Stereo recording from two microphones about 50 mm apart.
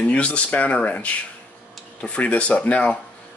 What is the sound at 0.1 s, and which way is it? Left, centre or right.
Speech, left.